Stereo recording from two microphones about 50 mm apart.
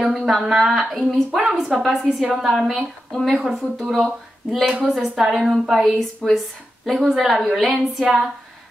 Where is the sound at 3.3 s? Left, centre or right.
Centre.